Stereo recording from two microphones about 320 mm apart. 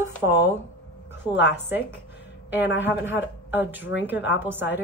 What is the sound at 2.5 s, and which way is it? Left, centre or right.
A woman's voice, centre.